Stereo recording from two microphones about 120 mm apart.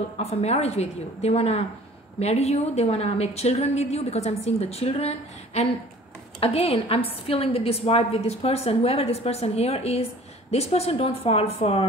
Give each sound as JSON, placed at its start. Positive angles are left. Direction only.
{"t": 0.2, "sound": "a woman's voice", "side_deg": 60}